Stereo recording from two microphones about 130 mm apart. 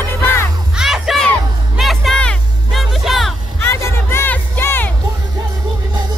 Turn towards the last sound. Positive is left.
turn(degrees=15)  # may be behind; listen again after turning